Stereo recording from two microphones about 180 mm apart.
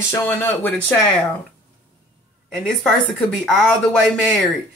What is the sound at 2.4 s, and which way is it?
Speech, centre (ahead or behind).